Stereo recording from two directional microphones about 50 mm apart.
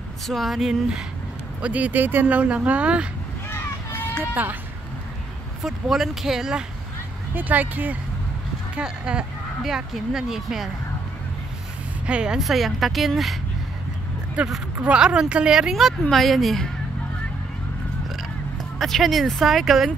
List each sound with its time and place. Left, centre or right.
0.3 s speech: centre
1.6 s speech: right
2.3 s speech: right
4.3 s speech: right
5.6 s speech: centre
7.3 s speech: right
8.7 s speech: centre
9.6 s speech: centre
12.1 s speech: centre
12.4 s speech: centre
14.4 s speech: right
16.1 s speech: centre
18.8 s speech: centre